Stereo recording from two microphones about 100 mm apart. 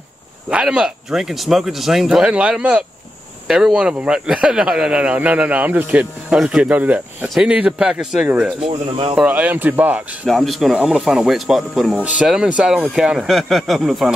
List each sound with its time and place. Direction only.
0.5 s speech: 10° right (ahead or behind)
8.5 s speech: 65° right (ahead or behind)
9.1 s speech: 15° right (ahead or behind)
10.2 s speech: centre (ahead or behind)